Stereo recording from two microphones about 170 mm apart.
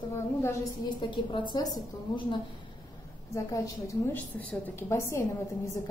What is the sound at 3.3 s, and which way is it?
A woman's voice, 15° left (ahead or behind).